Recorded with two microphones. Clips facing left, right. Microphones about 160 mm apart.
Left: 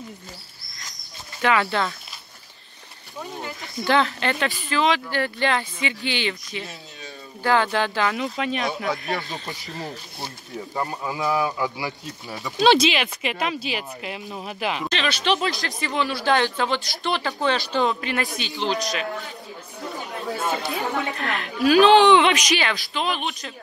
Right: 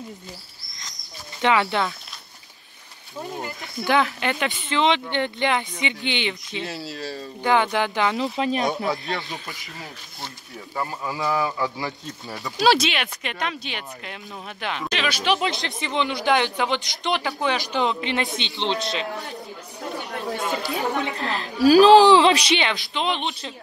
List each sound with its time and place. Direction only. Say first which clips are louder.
1.4 s speech: right 1 dB; 20° right (ahead or behind)
3.4 s speech: left 2 dB; 15° right (ahead or behind)
6.6 s speech: right 7 dB; 80° right
7.4 s speech: even; 15° right (ahead or behind)
8.2 s speech: right 2 dB; 30° right (ahead or behind)
9.8 s speech: left 5 dB; centre (ahead or behind)
10.7 s a man's voice: even; 20° left (ahead or behind)
12.6 s speech: left 2 dB; centre (ahead or behind)
14.9 s speech: right 2 dB; 10° right (ahead or behind)
21.2 s speech: right 5 dB; 30° right (ahead or behind)